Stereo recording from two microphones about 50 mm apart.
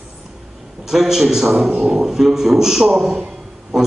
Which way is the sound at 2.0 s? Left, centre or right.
Centre.